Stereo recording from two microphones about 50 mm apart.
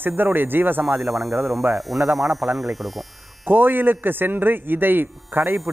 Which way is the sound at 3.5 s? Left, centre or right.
Right.